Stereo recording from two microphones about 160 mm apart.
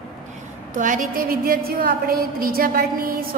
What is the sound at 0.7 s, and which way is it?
A woman's voice, 55° right (ahead or behind).